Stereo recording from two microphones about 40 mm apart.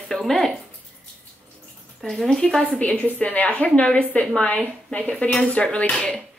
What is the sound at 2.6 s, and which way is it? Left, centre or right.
A woman's voice, left.